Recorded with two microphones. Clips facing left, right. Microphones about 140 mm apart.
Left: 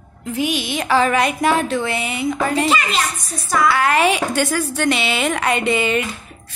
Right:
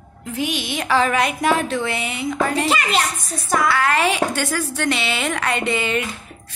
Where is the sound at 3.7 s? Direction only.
15° left (ahead or behind).